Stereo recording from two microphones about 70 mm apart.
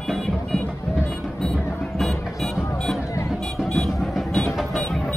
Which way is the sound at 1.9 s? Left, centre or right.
Centre.